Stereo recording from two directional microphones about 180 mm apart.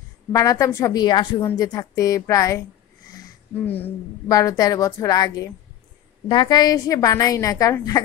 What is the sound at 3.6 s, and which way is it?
A woman's voice, 10° left (ahead or behind).